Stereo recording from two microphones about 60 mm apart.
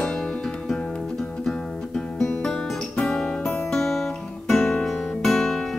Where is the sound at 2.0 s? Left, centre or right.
Centre.